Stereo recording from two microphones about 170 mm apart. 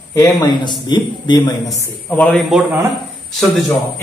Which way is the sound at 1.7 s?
10° left (ahead or behind).